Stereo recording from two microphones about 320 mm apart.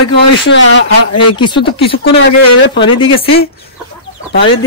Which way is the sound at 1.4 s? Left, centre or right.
Centre.